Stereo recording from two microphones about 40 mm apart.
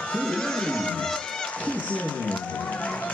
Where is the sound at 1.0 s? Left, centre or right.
Centre.